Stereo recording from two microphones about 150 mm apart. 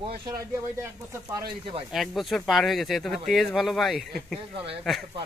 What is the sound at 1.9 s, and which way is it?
Speech, centre (ahead or behind).